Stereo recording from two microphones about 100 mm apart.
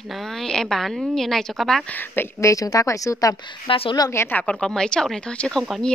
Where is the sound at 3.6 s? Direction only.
65° left (ahead or behind).